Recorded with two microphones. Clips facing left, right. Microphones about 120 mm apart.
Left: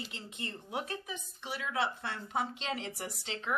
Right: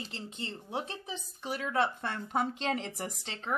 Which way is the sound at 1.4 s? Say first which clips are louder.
Right 4 dB; 45° right (ahead or behind).